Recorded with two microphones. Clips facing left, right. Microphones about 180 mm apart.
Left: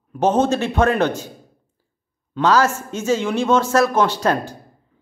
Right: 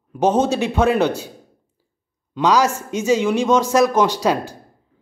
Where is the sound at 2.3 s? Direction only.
15° right (ahead or behind).